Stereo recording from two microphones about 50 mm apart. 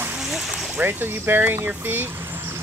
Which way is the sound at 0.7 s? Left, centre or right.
Right.